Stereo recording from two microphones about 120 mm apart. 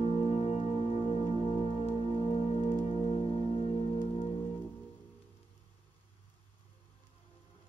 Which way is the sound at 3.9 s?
50° left (ahead or behind).